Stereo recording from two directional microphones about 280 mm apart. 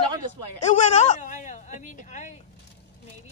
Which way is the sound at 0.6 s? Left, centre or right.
Left.